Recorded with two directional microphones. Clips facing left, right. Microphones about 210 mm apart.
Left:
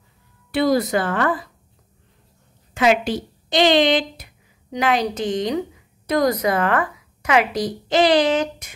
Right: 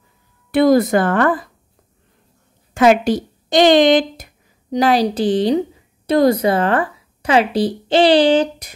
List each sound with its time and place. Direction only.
0.5 s speech: 50° right (ahead or behind)
2.7 s a woman's voice: 45° right (ahead or behind)